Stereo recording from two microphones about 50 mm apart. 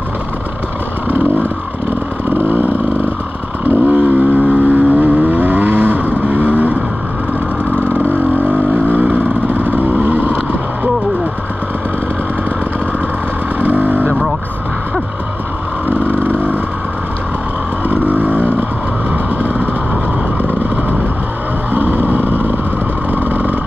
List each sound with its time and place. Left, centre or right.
2.2 s motorcycle: right
3.6 s vehicle: right
7.9 s vehicle: right
13.6 s vehicle: right
15.9 s vehicle: right
17.8 s vehicle: right
21.7 s vehicle: right